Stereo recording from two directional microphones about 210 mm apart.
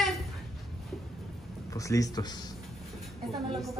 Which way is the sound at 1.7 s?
15° left (ahead or behind).